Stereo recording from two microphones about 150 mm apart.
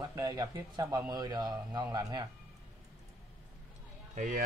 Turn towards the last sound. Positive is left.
turn(degrees=-55)  # may be behind; listen again after turning